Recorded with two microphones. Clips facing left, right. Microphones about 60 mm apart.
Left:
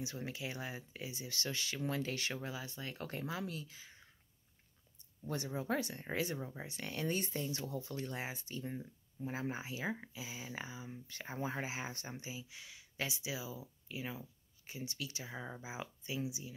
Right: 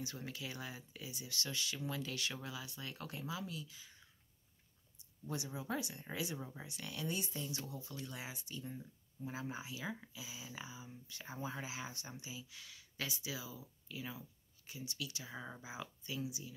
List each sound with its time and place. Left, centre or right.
0.0 s speech: left
5.3 s speech: left
6.4 s speech: left
15.3 s speech: centre
15.6 s speech: left